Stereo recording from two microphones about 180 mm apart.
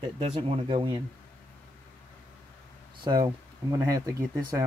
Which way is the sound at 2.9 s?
25° right (ahead or behind).